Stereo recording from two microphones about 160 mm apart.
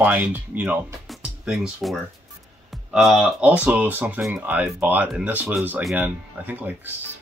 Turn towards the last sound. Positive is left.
turn(degrees=-10)  # may be behind; listen again after turning